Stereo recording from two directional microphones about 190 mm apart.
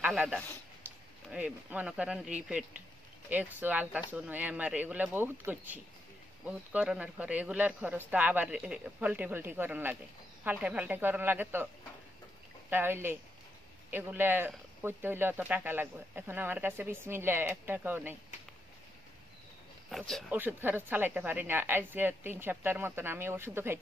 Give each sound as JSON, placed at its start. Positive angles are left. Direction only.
{"t": 0.0, "sound": "a man's voice", "side_deg": -5}
{"t": 19.9, "sound": "speech", "side_deg": 0}
{"t": 20.2, "sound": "a woman's voice", "side_deg": -10}